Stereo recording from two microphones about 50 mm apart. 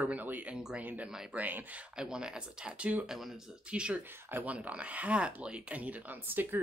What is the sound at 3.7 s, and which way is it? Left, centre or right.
Speech, right.